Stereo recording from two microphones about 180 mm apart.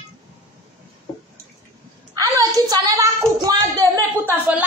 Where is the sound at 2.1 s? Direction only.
20° right (ahead or behind).